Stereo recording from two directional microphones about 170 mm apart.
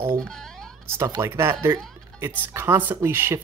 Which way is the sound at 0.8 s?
15° right (ahead or behind).